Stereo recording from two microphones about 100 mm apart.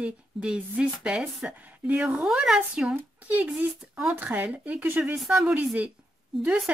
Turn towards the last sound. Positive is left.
turn(degrees=-10)  # may be behind; listen again after turning